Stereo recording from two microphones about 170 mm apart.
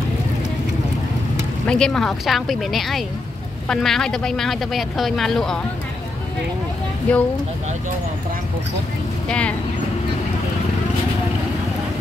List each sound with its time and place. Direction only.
1.7 s speech: 5° left (ahead or behind)
7.1 s speech: 10° left (ahead or behind)
9.3 s speech: 5° left (ahead or behind)